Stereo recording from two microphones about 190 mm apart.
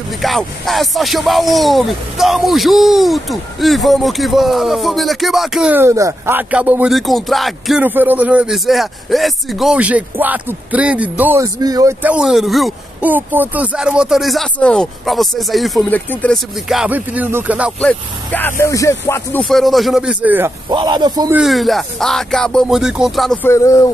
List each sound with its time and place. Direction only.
0.2 s speech: centre (ahead or behind); by 11.9 s 20° right (ahead or behind)
12.0 s speech: 5° right (ahead or behind)
16.6 s speech: 5° right (ahead or behind)
17.7 s speech: 5° left (ahead or behind)
19.4 s speech: centre (ahead or behind)
20.7 s a man's voice: 25° right (ahead or behind)
21.3 s speech: centre (ahead or behind)
23.4 s speech: 15° left (ahead or behind)